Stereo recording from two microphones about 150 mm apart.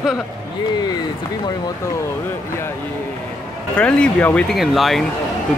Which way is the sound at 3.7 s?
10° left (ahead or behind).